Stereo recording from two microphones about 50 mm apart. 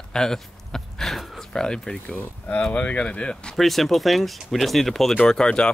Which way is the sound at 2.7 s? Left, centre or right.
Left.